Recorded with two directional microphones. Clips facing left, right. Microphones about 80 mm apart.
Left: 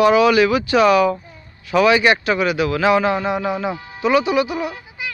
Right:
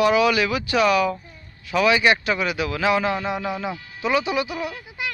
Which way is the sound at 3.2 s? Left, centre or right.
Centre.